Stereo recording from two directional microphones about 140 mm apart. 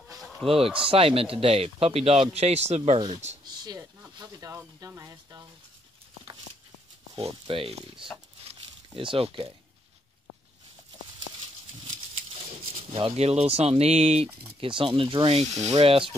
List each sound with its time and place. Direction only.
0.2 s chicken: centre (ahead or behind)
0.8 s speech: 40° right (ahead or behind)
3.4 s a sound: 30° right (ahead or behind)
4.2 s speech: 25° right (ahead or behind)
7.2 s speech: 40° right (ahead or behind)
8.5 s a sound: 40° right (ahead or behind)
12.9 s speech: 45° right (ahead or behind)
15.5 s speech: 50° right (ahead or behind)